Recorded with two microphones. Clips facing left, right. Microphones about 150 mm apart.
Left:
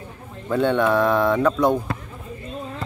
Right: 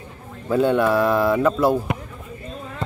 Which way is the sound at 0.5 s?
5° right (ahead or behind).